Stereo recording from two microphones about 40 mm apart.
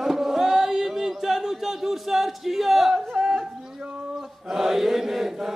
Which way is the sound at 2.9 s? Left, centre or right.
Centre.